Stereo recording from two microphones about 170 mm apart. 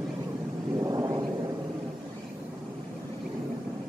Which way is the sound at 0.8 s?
20° right (ahead or behind).